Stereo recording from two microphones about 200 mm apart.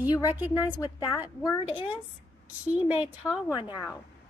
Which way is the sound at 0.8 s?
20° left (ahead or behind).